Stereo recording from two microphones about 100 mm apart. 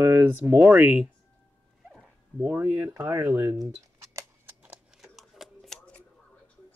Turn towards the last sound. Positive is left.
turn(degrees=0)  # may be behind; listen again after turning